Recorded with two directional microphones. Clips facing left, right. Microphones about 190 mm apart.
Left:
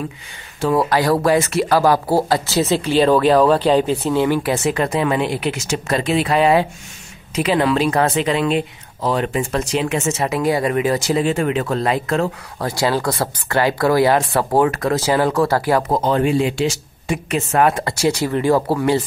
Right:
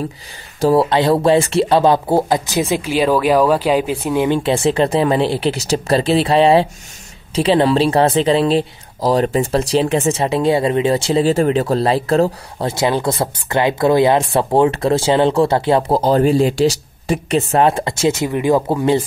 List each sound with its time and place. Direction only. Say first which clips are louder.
0.6 s speech: right 4 dB; 30° right (ahead or behind)